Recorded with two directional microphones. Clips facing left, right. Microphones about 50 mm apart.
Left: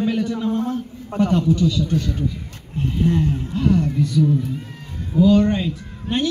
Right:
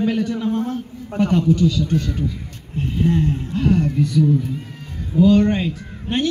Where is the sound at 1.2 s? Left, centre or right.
Right.